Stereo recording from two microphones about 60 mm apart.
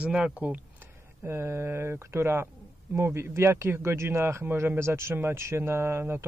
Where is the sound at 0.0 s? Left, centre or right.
Centre.